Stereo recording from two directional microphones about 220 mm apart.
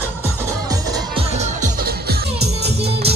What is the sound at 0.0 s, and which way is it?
Music, 10° right (ahead or behind).